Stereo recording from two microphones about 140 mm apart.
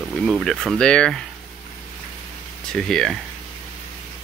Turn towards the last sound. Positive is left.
turn(degrees=5)  # may be behind; listen again after turning